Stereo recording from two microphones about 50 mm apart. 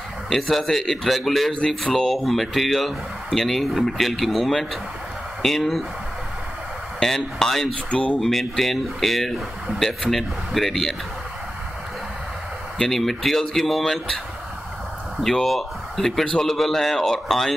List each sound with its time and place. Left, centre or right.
0.3 s speech: centre
7.0 s speech: centre
7.9 s speech: left
8.2 s speech: centre
12.7 s speech: centre
15.3 s a man's voice: centre